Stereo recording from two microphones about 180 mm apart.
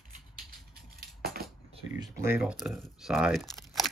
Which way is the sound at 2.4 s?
Centre (ahead or behind).